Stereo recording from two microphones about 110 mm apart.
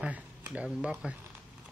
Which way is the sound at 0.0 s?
10° right (ahead or behind).